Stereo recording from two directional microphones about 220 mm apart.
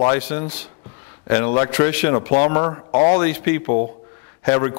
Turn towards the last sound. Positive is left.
turn(degrees=20)  # may be behind; listen again after turning